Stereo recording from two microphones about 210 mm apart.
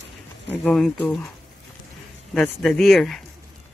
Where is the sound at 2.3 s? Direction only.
5° left (ahead or behind).